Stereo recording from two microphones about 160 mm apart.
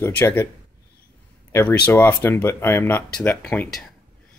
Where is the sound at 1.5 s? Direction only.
10° left (ahead or behind).